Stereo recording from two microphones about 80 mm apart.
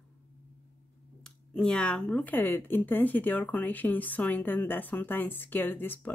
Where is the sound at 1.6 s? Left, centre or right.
Centre.